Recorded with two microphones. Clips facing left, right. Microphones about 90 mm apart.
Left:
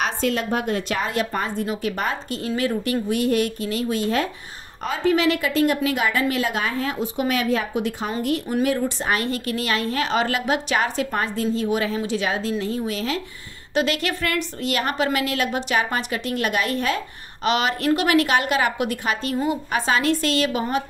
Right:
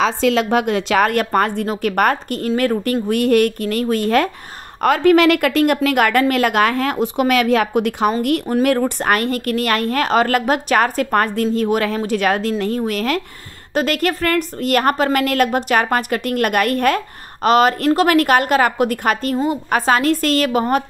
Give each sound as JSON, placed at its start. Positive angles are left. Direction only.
{"t": 0.2, "sound": "a woman's voice", "side_deg": -90}
{"t": 8.6, "sound": "a woman's voice", "side_deg": -55}
{"t": 13.7, "sound": "a woman's voice", "side_deg": -45}